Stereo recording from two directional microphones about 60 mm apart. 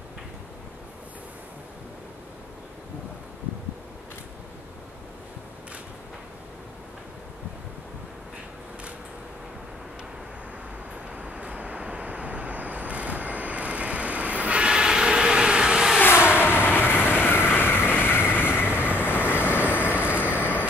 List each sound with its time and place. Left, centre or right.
11.1 s vehicle: right
16.0 s vehicle: left